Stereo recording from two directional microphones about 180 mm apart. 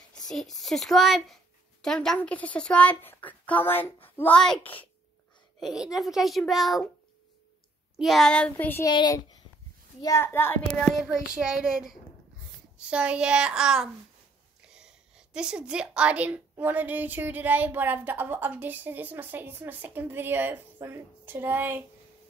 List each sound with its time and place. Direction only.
0.3 s a woman's voice: centre (ahead or behind)
8.0 s a woman's voice: centre (ahead or behind)